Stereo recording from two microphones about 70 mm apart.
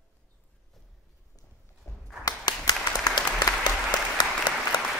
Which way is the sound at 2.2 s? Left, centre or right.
Left.